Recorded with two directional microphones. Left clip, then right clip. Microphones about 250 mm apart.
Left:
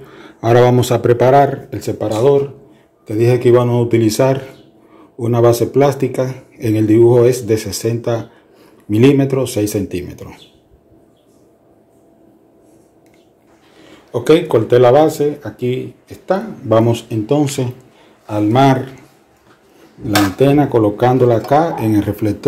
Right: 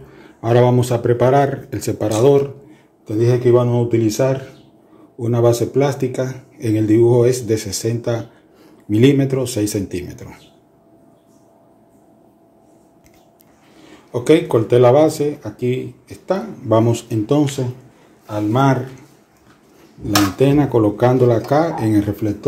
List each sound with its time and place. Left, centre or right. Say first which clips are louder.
0.0 s speech: left 6 dB; centre
3.1 s speech: left 3 dB; centre
13.8 s speech: left 2 dB; centre
18.2 s a man's voice: left 5 dB; left
20.2 s speech: left 3 dB; centre